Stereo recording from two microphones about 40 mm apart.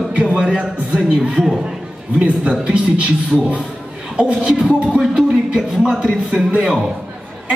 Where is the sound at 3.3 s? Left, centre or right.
Centre.